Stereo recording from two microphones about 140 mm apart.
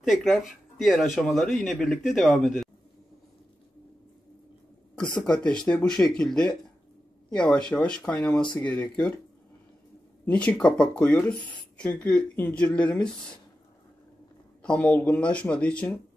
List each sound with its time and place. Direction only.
0.1 s speech: centre (ahead or behind)
5.1 s speech: 5° left (ahead or behind)
10.2 s speech: 10° left (ahead or behind)
14.6 s speech: 10° left (ahead or behind)